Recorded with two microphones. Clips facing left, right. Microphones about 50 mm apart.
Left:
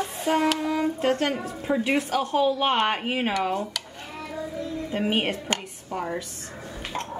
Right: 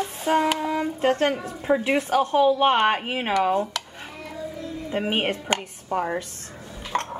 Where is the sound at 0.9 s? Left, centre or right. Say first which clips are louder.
Right 3 dB; right.